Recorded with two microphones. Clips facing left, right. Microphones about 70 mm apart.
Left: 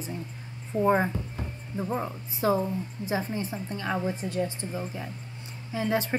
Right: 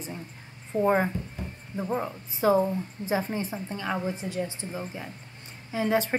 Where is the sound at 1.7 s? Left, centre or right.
Centre.